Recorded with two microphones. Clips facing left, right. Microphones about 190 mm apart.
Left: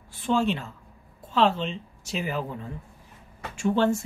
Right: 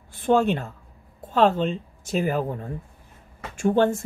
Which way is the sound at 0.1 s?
55° right (ahead or behind).